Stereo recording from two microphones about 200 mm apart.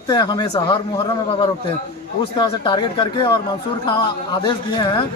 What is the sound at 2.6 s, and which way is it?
Speech, 25° left (ahead or behind).